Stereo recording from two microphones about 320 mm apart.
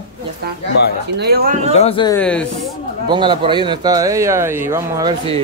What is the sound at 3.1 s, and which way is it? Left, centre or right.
A man's voice, centre.